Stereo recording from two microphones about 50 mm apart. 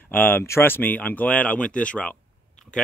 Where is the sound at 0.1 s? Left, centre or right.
Left.